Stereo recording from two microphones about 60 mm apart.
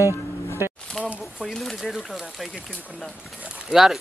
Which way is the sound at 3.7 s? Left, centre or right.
Centre.